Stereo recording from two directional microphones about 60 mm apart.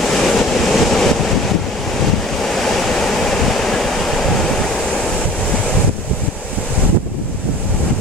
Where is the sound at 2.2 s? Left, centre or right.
Centre.